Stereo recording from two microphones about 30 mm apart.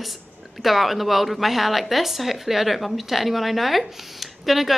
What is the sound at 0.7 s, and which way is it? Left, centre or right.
Speech, centre.